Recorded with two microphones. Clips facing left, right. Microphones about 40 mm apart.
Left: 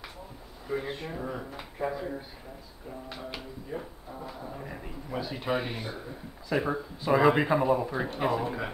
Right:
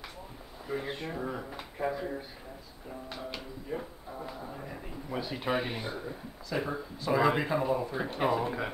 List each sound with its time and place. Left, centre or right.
0.7 s speech: centre
6.5 s speech: centre
8.1 s speech: centre